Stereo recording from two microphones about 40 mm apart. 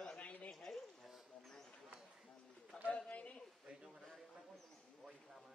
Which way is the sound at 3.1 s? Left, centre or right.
Left.